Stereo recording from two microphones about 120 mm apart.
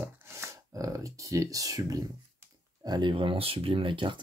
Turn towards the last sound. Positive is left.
turn(degrees=-45)  # may be behind; listen again after turning